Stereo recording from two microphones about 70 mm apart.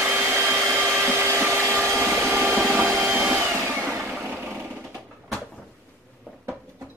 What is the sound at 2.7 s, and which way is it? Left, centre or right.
Vacuum cleaner, right.